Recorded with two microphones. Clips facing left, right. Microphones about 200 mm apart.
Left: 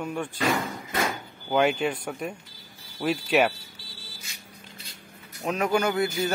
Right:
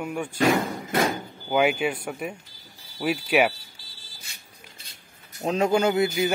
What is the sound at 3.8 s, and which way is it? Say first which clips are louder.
Vehicle: left 6 dB; 60° left (ahead or behind).